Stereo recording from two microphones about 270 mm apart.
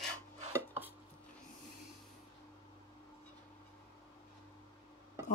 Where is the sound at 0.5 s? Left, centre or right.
Centre.